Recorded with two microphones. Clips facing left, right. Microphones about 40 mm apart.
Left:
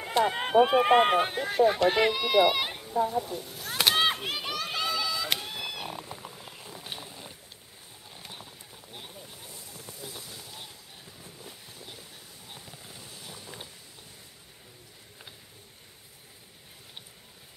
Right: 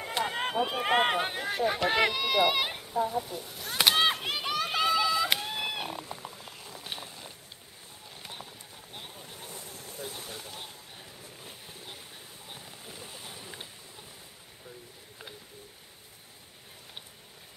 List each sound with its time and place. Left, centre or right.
0.0 s speech: centre
0.8 s run: centre
5.9 s cat: centre
7.1 s a sound: centre
8.2 s clip-clop: centre
9.5 s a sound: right
11.4 s vehicle: right
12.4 s vehicle: centre